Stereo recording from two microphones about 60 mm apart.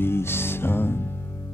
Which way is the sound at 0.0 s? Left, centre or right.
Left.